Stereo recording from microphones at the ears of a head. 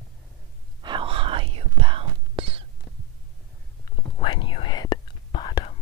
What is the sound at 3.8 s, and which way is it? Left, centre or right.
Whispering, left.